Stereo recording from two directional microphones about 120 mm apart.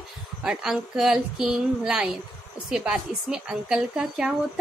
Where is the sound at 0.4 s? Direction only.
5° right (ahead or behind).